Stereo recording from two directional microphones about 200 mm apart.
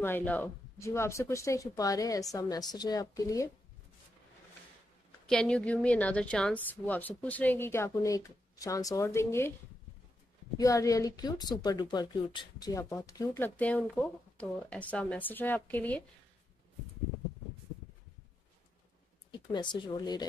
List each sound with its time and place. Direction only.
0.0 s a woman's voice: 10° left (ahead or behind)
5.2 s a woman's voice: 5° left (ahead or behind)
10.6 s a woman's voice: 15° left (ahead or behind)
19.3 s speech: 20° left (ahead or behind)